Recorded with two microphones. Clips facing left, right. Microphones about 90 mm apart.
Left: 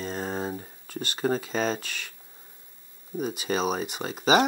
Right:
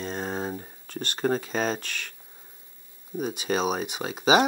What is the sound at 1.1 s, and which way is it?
Speech, 50° right (ahead or behind).